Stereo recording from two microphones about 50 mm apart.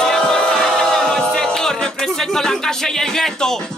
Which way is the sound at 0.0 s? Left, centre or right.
Centre.